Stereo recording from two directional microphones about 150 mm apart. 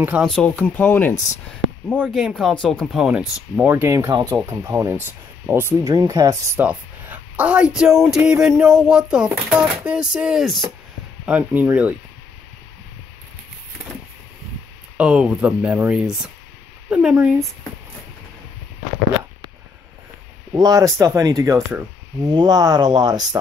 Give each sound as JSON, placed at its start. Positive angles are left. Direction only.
{"t": 0.0, "sound": "speech", "side_deg": -10}
{"t": 0.3, "sound": "speech", "side_deg": 5}
{"t": 6.6, "sound": "speech", "side_deg": -10}
{"t": 11.2, "sound": "speech", "side_deg": -10}
{"t": 15.0, "sound": "speech", "side_deg": -10}
{"t": 20.5, "sound": "speech", "side_deg": -25}